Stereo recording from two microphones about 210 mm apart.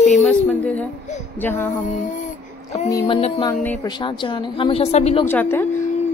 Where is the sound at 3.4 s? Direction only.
20° left (ahead or behind).